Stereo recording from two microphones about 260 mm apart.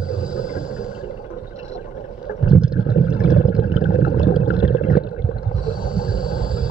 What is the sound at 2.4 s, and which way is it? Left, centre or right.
Boat, centre.